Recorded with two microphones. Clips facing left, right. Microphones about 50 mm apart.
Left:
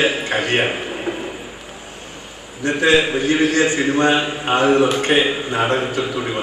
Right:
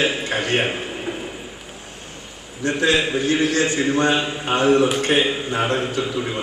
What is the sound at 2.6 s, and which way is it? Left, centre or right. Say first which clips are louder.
A man's voice: left 4 dB; left.